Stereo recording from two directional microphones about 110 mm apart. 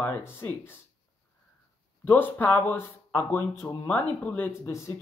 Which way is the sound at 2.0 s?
20° left (ahead or behind).